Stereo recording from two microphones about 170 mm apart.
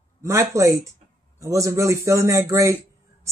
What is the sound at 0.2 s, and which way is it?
Speech, 15° right (ahead or behind).